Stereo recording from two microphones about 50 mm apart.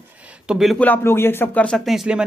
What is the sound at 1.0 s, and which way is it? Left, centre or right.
Speech, left.